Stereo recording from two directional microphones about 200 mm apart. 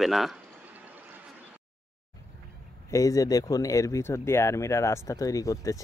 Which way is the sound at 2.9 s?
15° left (ahead or behind).